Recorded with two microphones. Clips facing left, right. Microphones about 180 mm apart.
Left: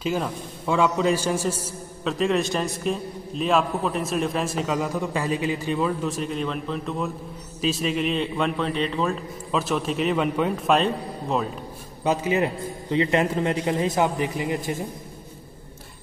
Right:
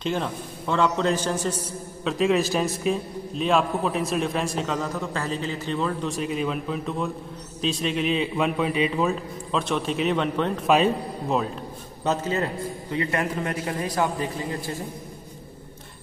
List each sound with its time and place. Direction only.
0.0 s a man's voice: 5° left (ahead or behind)
2.0 s a man's voice: centre (ahead or behind)
12.0 s a man's voice: 10° left (ahead or behind)